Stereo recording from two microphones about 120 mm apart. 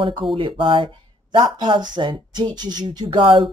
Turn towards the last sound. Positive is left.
turn(degrees=-40)  # may be behind; listen again after turning